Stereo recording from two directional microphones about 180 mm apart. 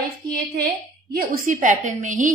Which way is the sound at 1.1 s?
55° right (ahead or behind).